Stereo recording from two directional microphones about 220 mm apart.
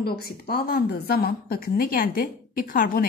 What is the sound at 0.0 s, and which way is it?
A woman's voice, 45° left (ahead or behind).